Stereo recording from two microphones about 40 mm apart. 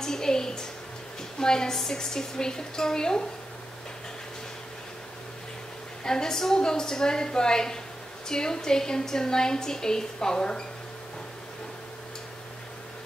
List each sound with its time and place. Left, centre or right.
0.0 s a sound: centre
1.4 s a woman's voice: centre
6.0 s a woman's voice: centre